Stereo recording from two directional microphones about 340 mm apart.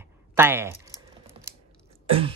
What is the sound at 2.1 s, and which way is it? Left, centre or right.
Speech, centre.